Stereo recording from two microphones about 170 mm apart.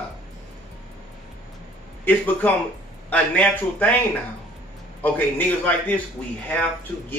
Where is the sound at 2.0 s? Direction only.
10° left (ahead or behind).